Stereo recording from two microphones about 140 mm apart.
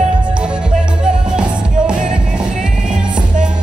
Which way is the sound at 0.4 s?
5° right (ahead or behind).